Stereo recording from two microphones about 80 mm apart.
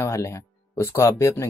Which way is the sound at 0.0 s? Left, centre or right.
Left.